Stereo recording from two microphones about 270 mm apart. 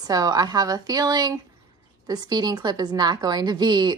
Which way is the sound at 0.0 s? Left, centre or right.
Centre.